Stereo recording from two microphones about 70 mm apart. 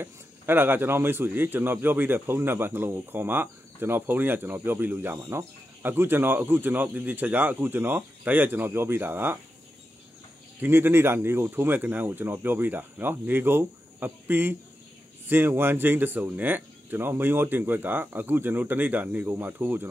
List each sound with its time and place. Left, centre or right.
0.0 s a man's voice: right
10.6 s speech: right